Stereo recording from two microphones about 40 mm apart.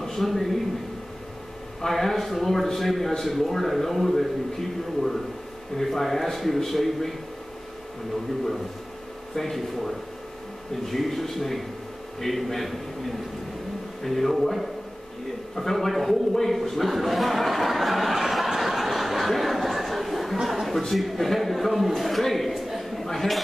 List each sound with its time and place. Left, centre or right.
0.0 s a sound: centre
1.8 s a man's voice: centre
9.3 s a man's voice: centre
14.0 s a man's voice: centre